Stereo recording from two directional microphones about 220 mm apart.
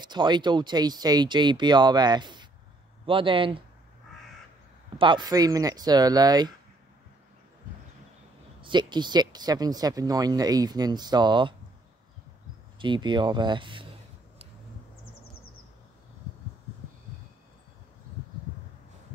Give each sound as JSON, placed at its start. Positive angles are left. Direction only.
{"t": 0.0, "sound": "speech", "side_deg": -20}
{"t": 4.9, "sound": "speech", "side_deg": -20}
{"t": 8.5, "sound": "speech", "side_deg": -20}
{"t": 12.7, "sound": "speech", "side_deg": -20}